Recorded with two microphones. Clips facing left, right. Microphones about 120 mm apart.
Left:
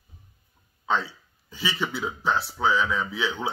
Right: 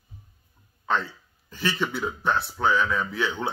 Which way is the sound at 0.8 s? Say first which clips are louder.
Even; 5° left (ahead or behind).